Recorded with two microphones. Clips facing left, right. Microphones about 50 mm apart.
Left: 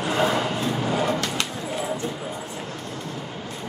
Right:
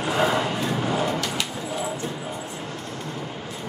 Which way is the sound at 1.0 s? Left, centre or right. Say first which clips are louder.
Left 1 dB; left.